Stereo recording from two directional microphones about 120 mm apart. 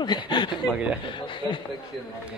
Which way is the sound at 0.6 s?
10° right (ahead or behind).